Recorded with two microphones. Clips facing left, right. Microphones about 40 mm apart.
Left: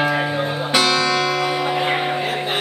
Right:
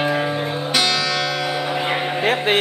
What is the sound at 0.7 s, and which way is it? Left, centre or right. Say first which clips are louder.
Music: left 3 dB; centre.